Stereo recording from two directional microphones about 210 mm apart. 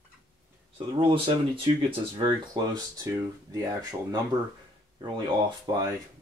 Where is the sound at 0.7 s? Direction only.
25° right (ahead or behind).